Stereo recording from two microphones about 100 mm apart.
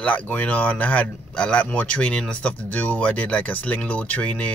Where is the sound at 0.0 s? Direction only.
15° left (ahead or behind).